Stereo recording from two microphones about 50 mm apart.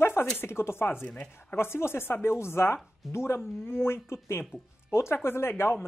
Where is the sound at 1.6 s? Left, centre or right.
Left.